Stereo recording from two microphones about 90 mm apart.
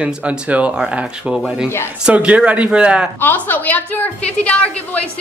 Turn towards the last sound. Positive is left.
turn(degrees=15)  # may be behind; listen again after turning